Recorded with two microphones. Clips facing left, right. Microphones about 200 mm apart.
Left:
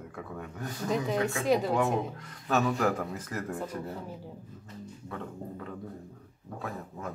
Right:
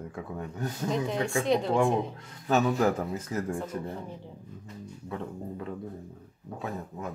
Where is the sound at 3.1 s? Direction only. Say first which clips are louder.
Right 4 dB; 25° right (ahead or behind).